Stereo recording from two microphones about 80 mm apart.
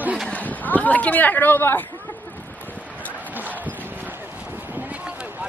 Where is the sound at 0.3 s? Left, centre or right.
Centre.